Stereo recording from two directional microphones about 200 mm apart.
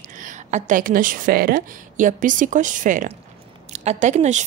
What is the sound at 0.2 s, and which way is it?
A woman's voice, 40° right (ahead or behind).